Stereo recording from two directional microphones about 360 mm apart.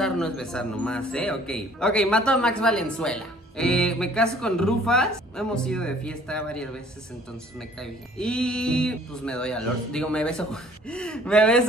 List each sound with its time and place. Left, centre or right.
0.0 s a man's voice: centre
7.8 s a man's voice: centre